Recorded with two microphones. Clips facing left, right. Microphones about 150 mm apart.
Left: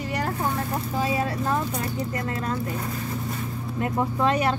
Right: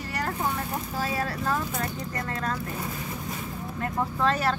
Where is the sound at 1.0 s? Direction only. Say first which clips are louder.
Left 4 dB; 25° left (ahead or behind).